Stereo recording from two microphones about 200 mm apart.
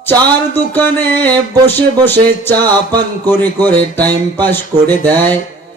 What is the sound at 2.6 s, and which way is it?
Music, 20° right (ahead or behind).